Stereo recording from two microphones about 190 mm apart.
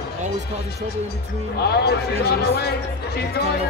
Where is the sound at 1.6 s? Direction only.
60° left (ahead or behind).